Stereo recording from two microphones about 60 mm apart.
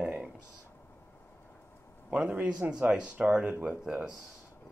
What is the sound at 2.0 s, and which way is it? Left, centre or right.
Speech, right.